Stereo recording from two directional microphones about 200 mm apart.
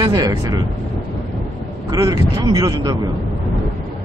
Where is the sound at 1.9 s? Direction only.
15° right (ahead or behind).